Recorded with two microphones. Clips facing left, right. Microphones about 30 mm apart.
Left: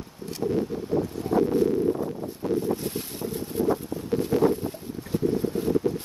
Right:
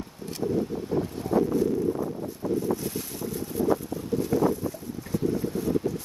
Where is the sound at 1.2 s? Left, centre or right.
Left.